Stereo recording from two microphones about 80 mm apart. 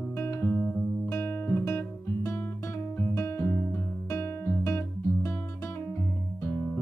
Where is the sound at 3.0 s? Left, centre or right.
Left.